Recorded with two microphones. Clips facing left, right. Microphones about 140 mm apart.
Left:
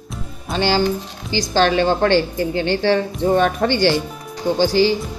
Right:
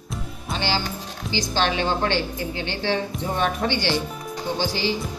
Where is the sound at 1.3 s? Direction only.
45° left (ahead or behind).